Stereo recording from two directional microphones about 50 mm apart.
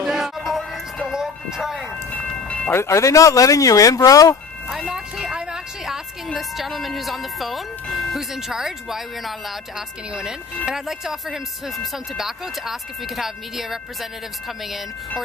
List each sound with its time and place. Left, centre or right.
0.0 s music: centre
2.1 s train: left
2.7 s speech: left
5.2 s a sound: centre
5.9 s a woman's voice: centre